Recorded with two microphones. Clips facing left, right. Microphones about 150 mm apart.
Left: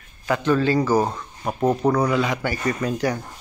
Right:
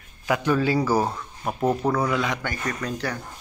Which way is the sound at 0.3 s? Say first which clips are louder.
Left 2 dB; 10° right (ahead or behind).